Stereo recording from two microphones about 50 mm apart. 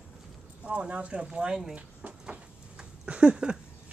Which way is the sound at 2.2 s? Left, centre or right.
Centre.